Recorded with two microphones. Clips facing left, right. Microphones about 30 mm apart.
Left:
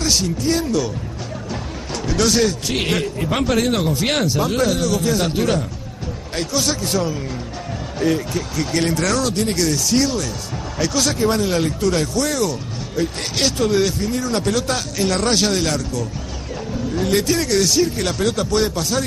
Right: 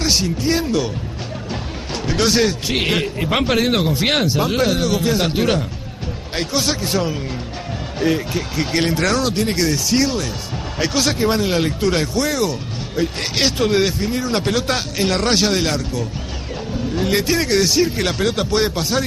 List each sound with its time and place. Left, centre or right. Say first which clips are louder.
0.1 s a man's voice: even; centre
2.0 s a man's voice: even; right
8.0 s a man's voice: right 1 dB; centre
11.0 s a man's voice: right 1 dB; right
15.2 s a man's voice: right 1 dB; centre